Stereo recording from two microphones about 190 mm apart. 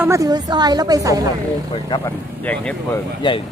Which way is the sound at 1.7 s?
20° left (ahead or behind).